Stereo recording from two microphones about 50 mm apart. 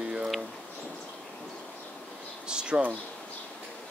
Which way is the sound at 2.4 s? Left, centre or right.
Centre.